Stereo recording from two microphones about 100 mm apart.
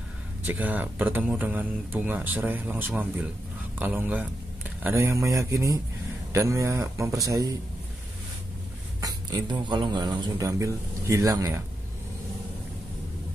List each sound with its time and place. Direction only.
0.4 s speech: 15° right (ahead or behind); by 7.5 s 35° right (ahead or behind)
9.0 s speech: 45° right (ahead or behind)
10.4 s speech: 30° right (ahead or behind)